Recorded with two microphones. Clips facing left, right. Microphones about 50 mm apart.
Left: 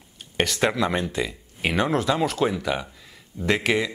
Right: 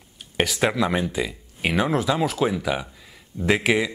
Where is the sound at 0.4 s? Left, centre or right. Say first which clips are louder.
Right 1 dB; centre.